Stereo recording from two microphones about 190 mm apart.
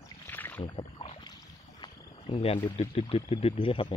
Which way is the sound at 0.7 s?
30° left (ahead or behind).